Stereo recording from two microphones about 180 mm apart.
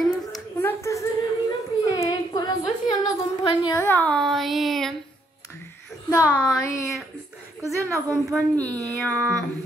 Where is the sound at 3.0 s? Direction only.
25° left (ahead or behind).